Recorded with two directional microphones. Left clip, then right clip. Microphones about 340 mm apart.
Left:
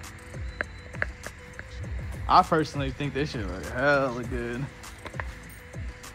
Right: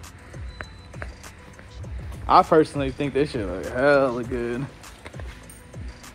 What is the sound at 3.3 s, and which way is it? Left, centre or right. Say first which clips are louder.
Speech: right 5 dB; right.